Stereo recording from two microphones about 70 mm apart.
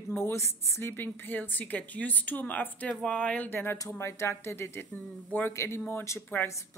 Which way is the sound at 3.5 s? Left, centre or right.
Left.